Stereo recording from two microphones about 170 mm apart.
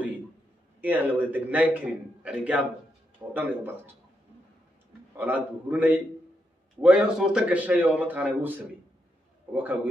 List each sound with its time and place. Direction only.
0.7 s a man's voice: 10° right (ahead or behind)
5.1 s a man's voice: 10° right (ahead or behind)